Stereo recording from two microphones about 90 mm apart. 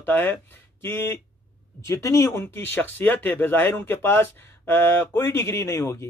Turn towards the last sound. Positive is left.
turn(degrees=30)  # may be behind; listen again after turning